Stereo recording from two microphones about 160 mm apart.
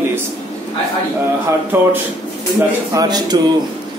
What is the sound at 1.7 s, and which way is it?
A man's voice, 15° right (ahead or behind).